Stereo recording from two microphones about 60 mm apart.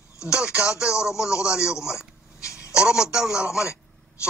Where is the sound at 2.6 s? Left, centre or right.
Centre.